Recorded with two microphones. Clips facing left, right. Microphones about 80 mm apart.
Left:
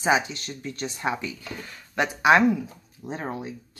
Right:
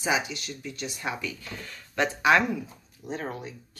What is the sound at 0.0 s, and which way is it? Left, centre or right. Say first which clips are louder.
Speech: left 5 dB; left.